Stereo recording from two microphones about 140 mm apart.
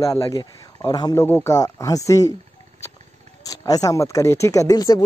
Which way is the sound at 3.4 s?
25° left (ahead or behind).